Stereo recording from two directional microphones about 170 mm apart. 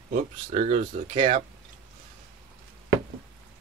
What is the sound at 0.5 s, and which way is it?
Speech, 35° right (ahead or behind).